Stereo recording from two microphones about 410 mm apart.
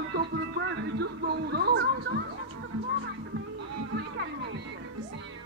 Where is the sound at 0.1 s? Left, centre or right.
Right.